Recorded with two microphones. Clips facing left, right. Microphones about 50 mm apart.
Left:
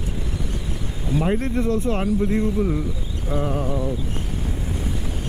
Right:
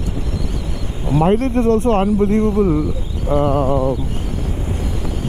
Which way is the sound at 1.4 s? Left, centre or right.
Right.